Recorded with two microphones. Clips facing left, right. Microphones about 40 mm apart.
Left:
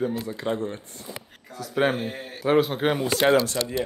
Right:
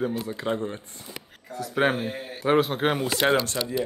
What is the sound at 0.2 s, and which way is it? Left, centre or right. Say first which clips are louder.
Speech: even; centre.